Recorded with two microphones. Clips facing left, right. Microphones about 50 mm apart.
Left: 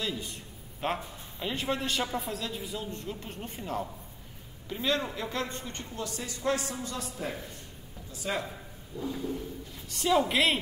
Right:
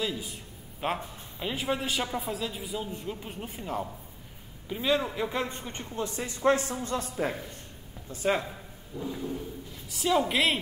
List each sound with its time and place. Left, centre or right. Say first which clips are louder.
0.0 s a man's voice: right 2 dB; centre; by 8.4 s right
8.5 s a sound: right 1 dB; centre
9.8 s a man's voice: even; centre